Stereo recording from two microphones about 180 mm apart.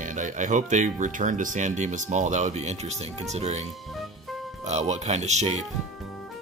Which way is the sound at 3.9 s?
Centre (ahead or behind).